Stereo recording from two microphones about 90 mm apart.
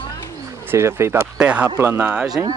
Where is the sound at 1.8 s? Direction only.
25° right (ahead or behind).